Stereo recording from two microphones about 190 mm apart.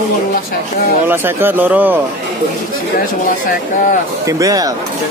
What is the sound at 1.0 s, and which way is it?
Speech, 10° right (ahead or behind).